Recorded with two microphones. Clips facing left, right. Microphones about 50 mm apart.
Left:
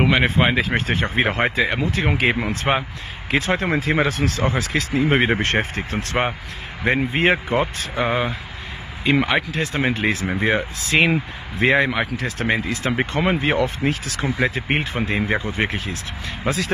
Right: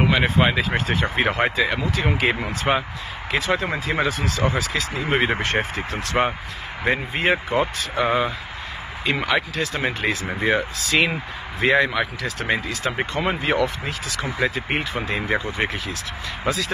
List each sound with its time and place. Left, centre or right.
0.0 s speech: left
2.7 s speech: left
3.3 s speech: left
5.4 s speech: left
7.9 s speech: centre; by 16.0 s left
16.4 s speech: left